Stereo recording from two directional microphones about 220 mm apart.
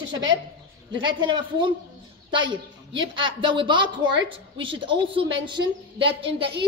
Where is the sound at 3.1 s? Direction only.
20° right (ahead or behind).